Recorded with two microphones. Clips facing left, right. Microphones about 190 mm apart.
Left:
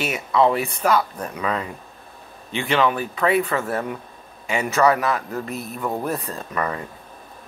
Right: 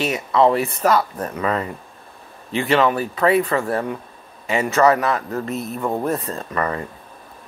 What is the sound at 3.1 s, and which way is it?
Speech, 30° right (ahead or behind).